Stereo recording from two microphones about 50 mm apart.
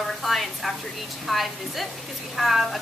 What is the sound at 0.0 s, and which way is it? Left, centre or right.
A woman's voice, centre.